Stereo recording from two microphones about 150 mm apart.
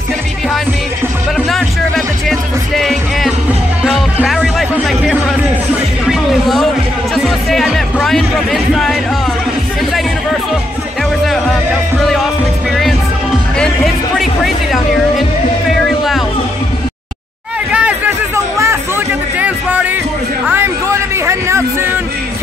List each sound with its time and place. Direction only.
1.5 s music: centre (ahead or behind)
12.0 s music: centre (ahead or behind)
13.6 s music: centre (ahead or behind)
17.7 s a sound: 10° right (ahead or behind)
21.3 s music: 20° right (ahead or behind)